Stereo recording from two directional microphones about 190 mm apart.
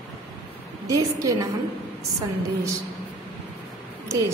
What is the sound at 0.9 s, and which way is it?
Speech, 20° right (ahead or behind).